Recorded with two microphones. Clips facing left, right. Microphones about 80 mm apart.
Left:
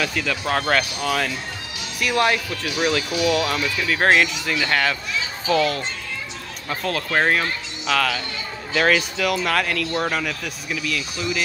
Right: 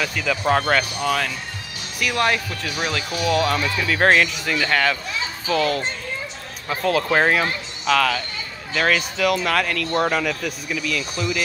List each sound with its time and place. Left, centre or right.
0.0 s speech: centre